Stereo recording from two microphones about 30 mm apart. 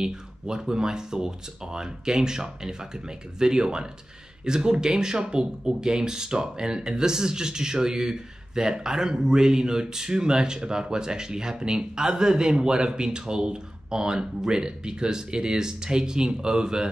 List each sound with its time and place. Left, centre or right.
0.0 s speech: centre